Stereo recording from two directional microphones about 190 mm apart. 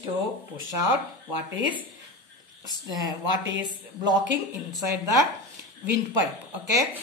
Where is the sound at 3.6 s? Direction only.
20° right (ahead or behind).